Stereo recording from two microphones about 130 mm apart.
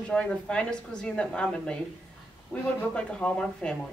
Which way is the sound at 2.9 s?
10° left (ahead or behind).